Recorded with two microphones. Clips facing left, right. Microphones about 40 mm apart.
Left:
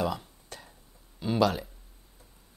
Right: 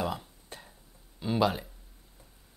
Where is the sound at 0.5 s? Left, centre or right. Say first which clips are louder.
Left 1 dB; right.